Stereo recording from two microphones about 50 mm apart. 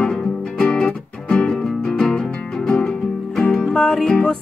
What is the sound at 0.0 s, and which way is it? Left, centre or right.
Music, centre.